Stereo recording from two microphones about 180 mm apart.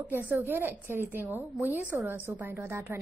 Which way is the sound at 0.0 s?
10° right (ahead or behind).